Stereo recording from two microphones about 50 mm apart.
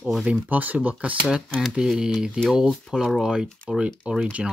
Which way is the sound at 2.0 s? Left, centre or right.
Centre.